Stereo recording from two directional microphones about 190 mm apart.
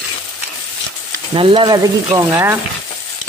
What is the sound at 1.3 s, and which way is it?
Speech, 25° right (ahead or behind).